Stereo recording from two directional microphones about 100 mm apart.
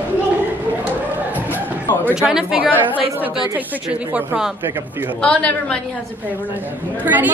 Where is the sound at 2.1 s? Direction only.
5° right (ahead or behind).